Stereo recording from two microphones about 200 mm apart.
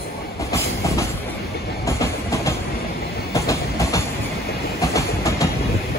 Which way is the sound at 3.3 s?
15° left (ahead or behind).